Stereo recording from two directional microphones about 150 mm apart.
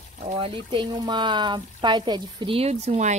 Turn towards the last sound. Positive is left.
turn(degrees=-50)  # may be behind; listen again after turning